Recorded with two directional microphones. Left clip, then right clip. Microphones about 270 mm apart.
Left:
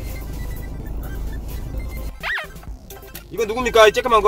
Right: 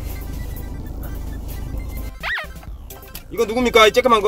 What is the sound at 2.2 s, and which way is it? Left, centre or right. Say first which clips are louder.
Music: even; centre.